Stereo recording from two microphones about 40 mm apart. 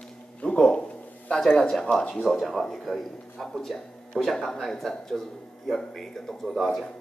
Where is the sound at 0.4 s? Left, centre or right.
Left.